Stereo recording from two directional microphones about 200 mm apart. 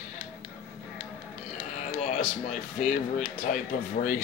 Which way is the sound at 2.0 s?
45° left (ahead or behind).